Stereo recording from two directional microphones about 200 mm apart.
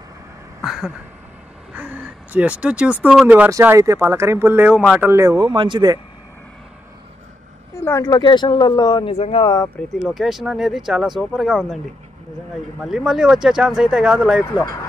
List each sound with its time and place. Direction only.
0.6 s a sound: centre (ahead or behind)
1.7 s speech: 10° right (ahead or behind)
7.8 s speech: 15° left (ahead or behind)
10.0 s speech: centre (ahead or behind)
12.8 s speech: centre (ahead or behind)
14.4 s speech: 15° left (ahead or behind)